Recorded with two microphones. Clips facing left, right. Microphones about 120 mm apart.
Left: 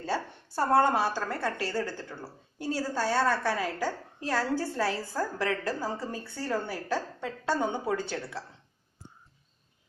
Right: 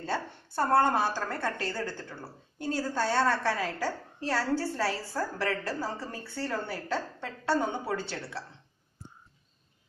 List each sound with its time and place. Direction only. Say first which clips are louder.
0.7 s a woman's voice: left 1 dB; 15° left (ahead or behind)